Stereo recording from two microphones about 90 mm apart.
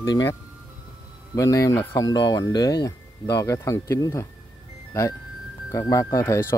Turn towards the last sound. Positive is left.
turn(degrees=30)  # may be behind; listen again after turning